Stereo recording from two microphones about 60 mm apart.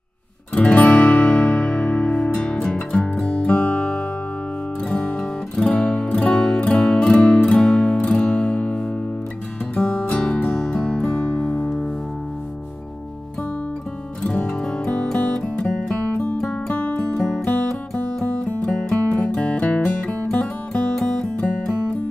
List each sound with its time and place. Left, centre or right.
0.6 s music: left
3.4 s music: left
10.5 s music: centre
11.1 s music: left
14.2 s music: centre
16.6 s music: left